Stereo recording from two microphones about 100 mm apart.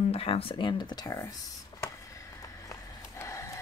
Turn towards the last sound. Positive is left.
turn(degrees=30)  # may be behind; listen again after turning